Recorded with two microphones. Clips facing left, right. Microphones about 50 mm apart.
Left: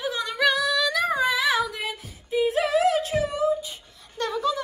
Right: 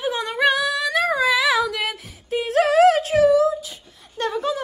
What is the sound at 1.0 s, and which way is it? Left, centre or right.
Female singing, right.